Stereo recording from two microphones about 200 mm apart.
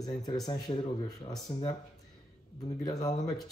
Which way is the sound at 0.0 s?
20° left (ahead or behind).